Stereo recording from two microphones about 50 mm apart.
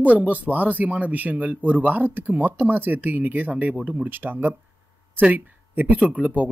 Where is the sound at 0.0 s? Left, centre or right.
Right.